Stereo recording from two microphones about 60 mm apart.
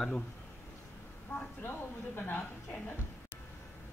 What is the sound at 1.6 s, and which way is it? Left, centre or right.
Speech, left.